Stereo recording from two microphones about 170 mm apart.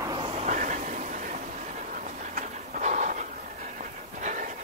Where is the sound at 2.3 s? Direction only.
45° right (ahead or behind).